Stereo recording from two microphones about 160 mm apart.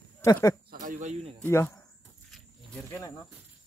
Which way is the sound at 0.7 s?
55° right (ahead or behind).